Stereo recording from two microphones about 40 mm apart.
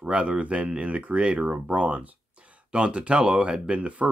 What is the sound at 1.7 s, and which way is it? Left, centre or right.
Speech, right.